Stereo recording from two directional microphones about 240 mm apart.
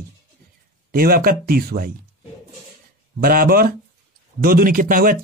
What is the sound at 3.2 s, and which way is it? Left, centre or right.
Speech, right.